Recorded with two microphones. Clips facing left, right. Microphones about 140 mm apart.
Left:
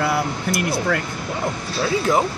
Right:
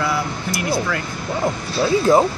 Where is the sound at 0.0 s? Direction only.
60° left (ahead or behind).